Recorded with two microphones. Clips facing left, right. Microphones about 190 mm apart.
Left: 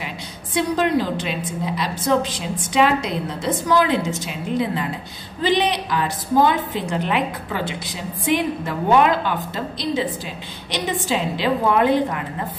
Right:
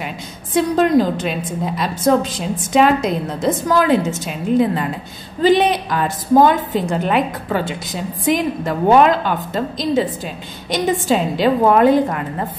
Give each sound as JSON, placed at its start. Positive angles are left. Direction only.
{"t": 0.6, "sound": "a woman's voice", "side_deg": -45}